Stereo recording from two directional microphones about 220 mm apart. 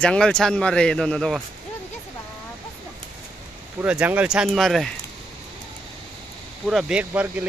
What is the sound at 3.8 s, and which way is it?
Speech, 5° right (ahead or behind).